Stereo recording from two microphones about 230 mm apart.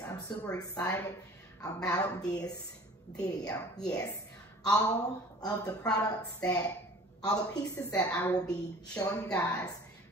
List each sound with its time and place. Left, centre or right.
0.0 s a woman's voice: centre
5.4 s a woman's voice: centre
5.8 s a woman's voice: centre
6.0 s a woman's voice: centre
9.0 s a woman's voice: centre